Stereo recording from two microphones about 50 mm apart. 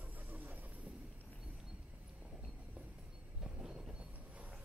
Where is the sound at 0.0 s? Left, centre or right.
Right.